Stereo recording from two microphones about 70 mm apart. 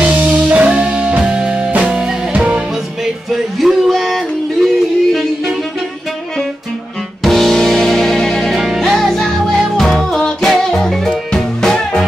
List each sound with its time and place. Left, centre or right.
0.0 s music: right
3.3 s music: centre
7.2 s music: centre